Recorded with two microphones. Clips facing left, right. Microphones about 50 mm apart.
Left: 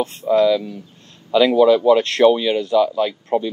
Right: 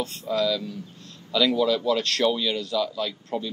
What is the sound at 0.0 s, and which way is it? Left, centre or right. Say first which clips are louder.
Speech: left 9 dB; left.